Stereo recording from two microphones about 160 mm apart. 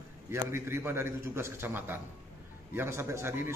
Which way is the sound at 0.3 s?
15° right (ahead or behind).